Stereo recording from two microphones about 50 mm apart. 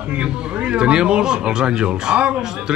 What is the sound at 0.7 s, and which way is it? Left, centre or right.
A man's voice, centre.